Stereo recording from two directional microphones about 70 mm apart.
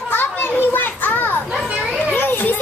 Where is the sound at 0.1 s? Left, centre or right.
Left.